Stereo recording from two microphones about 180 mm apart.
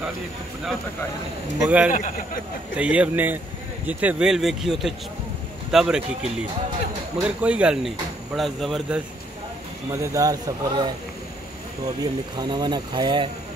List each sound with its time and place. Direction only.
1.6 s speech: 5° right (ahead or behind)
1.9 s speech: 45° left (ahead or behind)
2.8 s speech: 5° right (ahead or behind)
7.2 s speech: 5° right (ahead or behind)
9.9 s speech: 15° right (ahead or behind)
12.0 s speech: 20° right (ahead or behind)